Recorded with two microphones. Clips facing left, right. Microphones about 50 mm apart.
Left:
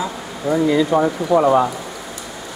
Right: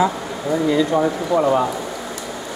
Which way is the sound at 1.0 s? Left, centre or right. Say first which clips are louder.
Left 2 dB; centre.